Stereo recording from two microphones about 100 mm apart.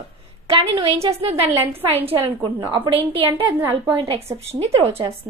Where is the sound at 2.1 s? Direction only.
60° right (ahead or behind).